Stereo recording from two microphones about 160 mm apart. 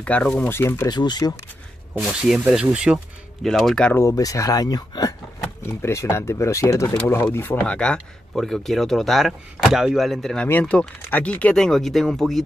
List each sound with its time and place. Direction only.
0.0 s speech: 5° left (ahead or behind)
0.9 s speech: 25° left (ahead or behind)
2.0 s speech: 5° right (ahead or behind)
4.0 s speech: 20° left (ahead or behind); by 12.4 s centre (ahead or behind)